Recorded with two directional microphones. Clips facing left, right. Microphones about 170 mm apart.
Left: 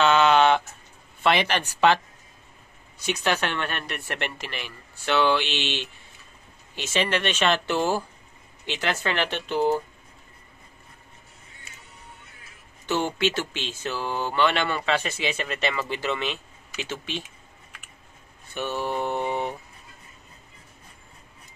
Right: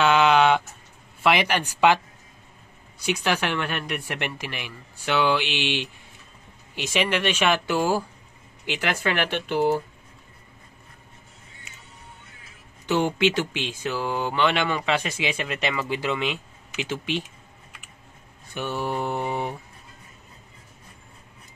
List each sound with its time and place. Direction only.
0.0 s a sound: 10° right (ahead or behind)
1.2 s speech: 10° right (ahead or behind)
3.0 s speech: 10° right (ahead or behind)
12.8 s speech: 15° right (ahead or behind)
18.5 s speech: 10° right (ahead or behind)